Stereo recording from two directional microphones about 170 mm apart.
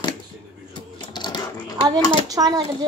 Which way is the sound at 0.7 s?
25° left (ahead or behind).